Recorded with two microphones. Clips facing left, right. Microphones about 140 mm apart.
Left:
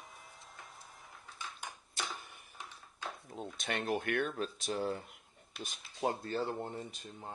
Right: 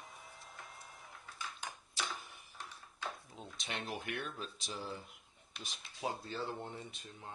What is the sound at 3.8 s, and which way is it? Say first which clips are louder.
Speech: left 10 dB; 50° left (ahead or behind).